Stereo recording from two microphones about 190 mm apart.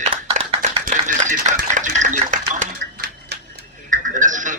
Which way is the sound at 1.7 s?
40° right (ahead or behind).